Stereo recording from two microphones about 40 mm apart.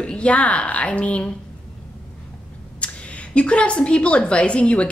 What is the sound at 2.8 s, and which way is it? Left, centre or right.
A woman's voice, left.